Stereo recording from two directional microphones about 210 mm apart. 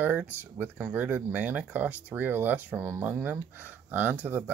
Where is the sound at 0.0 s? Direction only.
10° right (ahead or behind).